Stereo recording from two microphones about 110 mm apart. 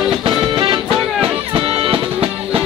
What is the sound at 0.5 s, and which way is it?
Music, 45° right (ahead or behind).